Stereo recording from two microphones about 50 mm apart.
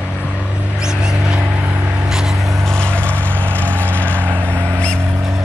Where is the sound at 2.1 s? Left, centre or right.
Centre.